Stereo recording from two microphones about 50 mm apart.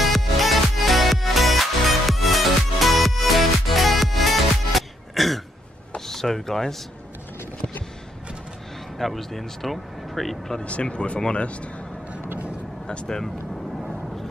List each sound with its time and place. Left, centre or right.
0.0 s music: centre
5.9 s a sound: centre
8.9 s speech: centre
10.6 s speech: left
12.3 s vehicle: right
12.8 s speech: centre